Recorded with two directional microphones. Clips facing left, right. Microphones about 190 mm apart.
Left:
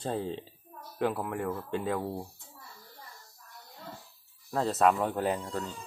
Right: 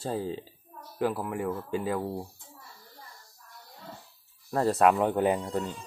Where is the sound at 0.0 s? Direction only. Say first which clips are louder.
Right 1 dB; 5° right (ahead or behind).